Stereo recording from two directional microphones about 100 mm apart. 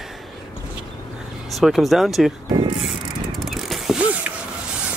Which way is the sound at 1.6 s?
Centre (ahead or behind).